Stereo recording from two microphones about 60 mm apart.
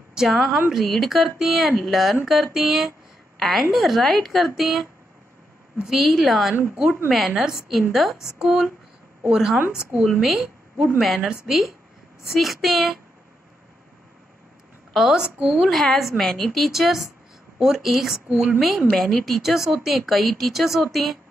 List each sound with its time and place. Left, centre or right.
0.1 s a woman's voice: centre
5.9 s a woman's voice: centre
6.7 s a woman's voice: right
7.1 s a woman's voice: centre
14.9 s a woman's voice: centre
15.7 s a woman's voice: centre